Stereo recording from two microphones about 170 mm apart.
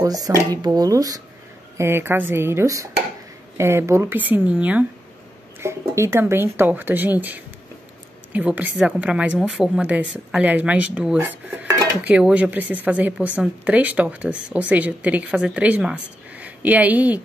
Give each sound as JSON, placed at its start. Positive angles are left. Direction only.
{"t": 0.0, "sound": "speech", "side_deg": -20}